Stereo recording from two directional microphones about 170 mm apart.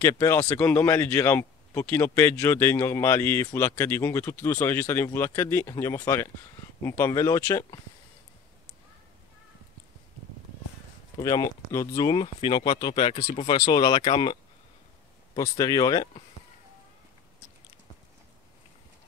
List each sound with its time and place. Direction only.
0.0 s speech: 15° left (ahead or behind)
11.1 s speech: 20° left (ahead or behind); by 13.6 s 35° left (ahead or behind)
13.6 s speech: 25° left (ahead or behind)
15.3 s speech: 20° left (ahead or behind)